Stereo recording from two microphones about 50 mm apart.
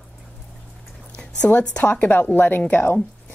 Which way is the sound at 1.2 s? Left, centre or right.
Left.